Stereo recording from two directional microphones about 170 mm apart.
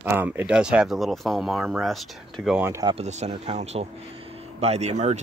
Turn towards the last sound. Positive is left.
turn(degrees=-40)  # may be behind; listen again after turning